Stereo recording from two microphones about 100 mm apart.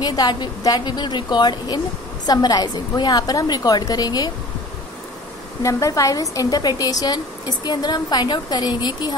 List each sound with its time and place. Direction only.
0.0 s a woman's voice: 40° left (ahead or behind)
5.6 s a woman's voice: 30° left (ahead or behind)